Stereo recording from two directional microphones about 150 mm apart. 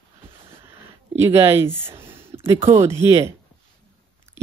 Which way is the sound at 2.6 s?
55° right (ahead or behind).